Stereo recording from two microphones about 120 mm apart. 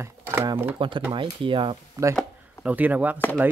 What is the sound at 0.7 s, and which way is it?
Speech, 45° right (ahead or behind).